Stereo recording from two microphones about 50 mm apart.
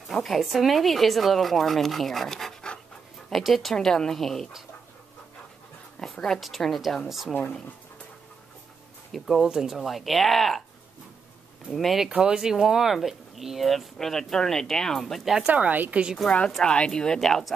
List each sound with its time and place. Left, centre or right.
0.1 s speech: centre
3.7 s speech: centre
6.0 s speech: centre
9.1 s speech: centre
9.4 s speech: centre
11.7 s speech: centre
12.1 s speech: centre
15.4 s a woman's voice: right
16.3 s a woman's voice: left